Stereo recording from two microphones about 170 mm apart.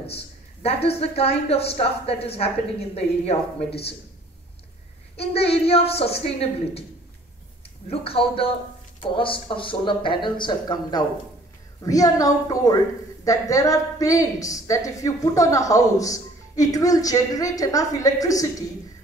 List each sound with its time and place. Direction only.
0.0 s a woman's voice: 35° left (ahead or behind)
5.1 s a woman's voice: 35° left (ahead or behind)
7.9 s a woman's voice: 35° left (ahead or behind)